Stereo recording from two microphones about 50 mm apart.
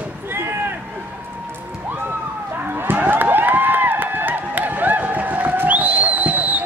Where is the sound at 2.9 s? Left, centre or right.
Right.